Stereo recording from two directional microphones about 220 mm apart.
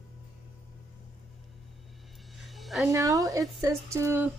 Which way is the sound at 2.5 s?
Centre (ahead or behind).